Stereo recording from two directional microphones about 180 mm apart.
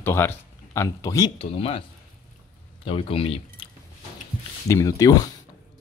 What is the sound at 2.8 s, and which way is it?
Speech, 30° left (ahead or behind).